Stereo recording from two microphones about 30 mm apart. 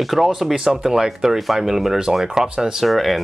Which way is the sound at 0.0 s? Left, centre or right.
Centre.